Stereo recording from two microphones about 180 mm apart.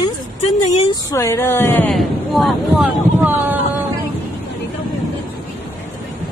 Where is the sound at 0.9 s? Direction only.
20° left (ahead or behind).